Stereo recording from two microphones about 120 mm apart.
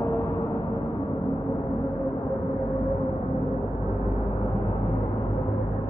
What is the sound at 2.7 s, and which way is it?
Music, 25° left (ahead or behind).